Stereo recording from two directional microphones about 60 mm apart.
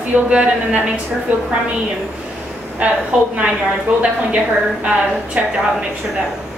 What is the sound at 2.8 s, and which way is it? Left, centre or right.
Speech, right.